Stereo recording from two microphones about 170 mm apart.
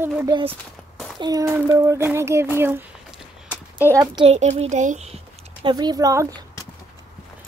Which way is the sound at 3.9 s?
25° right (ahead or behind).